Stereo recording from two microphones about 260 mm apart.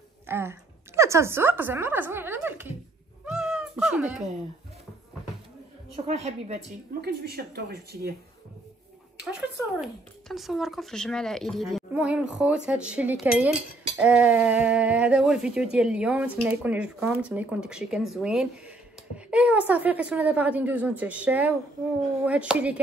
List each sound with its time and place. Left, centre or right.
0.3 s a woman's voice: centre
3.3 s cat: centre
6.0 s a woman's voice: right
7.0 s a woman's voice: right
9.1 s speech: centre